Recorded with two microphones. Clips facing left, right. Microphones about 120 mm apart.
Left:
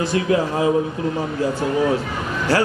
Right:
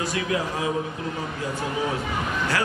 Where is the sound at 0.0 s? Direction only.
30° left (ahead or behind).